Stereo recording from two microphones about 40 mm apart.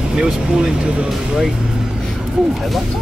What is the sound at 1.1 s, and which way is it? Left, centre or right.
Speech, centre.